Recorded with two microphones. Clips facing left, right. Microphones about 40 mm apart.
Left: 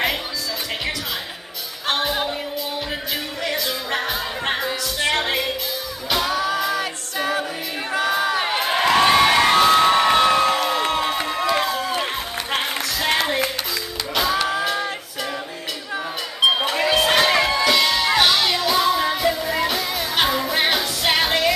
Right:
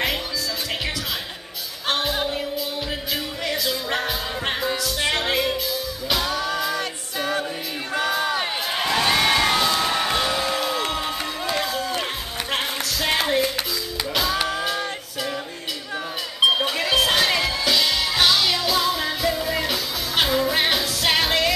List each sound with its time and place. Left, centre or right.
1.9 s music: centre
4.1 s music: centre
7.9 s crowd: centre
8.5 s a sound: left
8.9 s a sound: centre
9.5 s crowd: left
9.8 s music: left
10.9 s crowd: left
11.5 s a sound: centre
14.1 s music: centre
16.5 s music: centre
19.4 s music: centre